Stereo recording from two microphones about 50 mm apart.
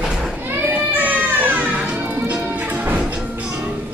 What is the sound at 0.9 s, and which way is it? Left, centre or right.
Music, right.